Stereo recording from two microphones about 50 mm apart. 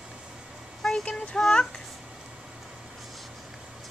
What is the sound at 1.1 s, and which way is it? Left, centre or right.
Child singing, centre.